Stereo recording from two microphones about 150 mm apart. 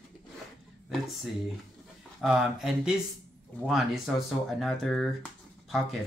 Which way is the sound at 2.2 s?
Centre (ahead or behind).